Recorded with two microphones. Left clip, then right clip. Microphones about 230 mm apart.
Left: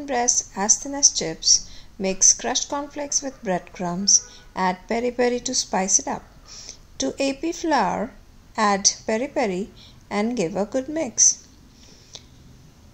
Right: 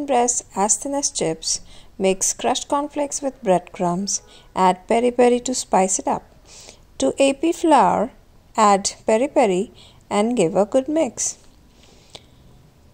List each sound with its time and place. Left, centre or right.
0.0 s a woman's voice: right